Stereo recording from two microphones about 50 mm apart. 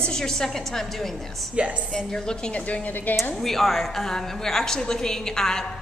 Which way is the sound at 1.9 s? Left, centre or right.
Centre.